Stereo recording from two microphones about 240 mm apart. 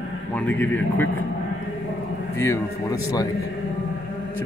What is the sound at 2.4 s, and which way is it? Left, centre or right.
Speech, centre.